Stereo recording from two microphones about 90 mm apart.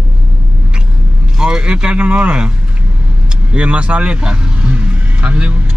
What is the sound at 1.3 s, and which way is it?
A man's voice, 10° right (ahead or behind).